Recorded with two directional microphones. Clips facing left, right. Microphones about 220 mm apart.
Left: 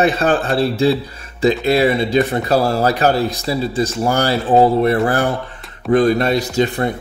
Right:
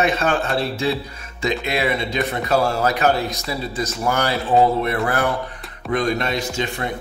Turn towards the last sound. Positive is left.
turn(degrees=40)  # may be behind; listen again after turning